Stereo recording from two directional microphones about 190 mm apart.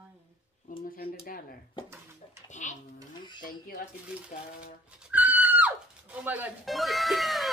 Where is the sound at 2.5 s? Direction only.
40° left (ahead or behind).